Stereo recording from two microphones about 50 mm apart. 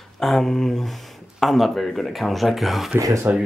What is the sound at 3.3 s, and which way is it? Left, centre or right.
Speech, right.